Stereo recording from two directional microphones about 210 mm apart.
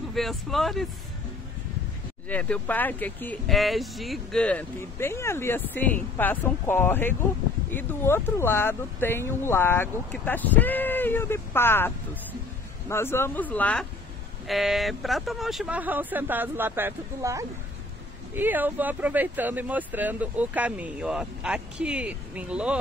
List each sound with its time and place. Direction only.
0.1 s speech: centre (ahead or behind)
2.2 s speech: 5° left (ahead or behind)